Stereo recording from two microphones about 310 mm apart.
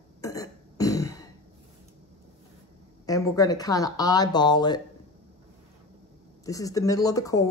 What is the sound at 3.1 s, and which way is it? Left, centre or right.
Speech, centre.